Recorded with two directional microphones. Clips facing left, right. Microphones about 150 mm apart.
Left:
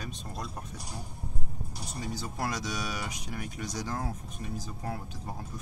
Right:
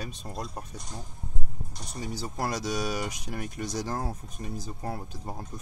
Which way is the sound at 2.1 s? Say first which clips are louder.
Right 3 dB; 35° right (ahead or behind).